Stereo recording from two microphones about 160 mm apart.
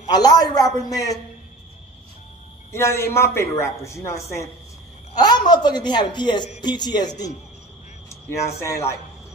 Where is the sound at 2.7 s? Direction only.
15° left (ahead or behind).